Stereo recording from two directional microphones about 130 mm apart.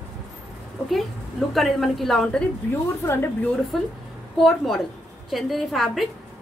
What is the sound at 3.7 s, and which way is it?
A woman's voice, centre (ahead or behind).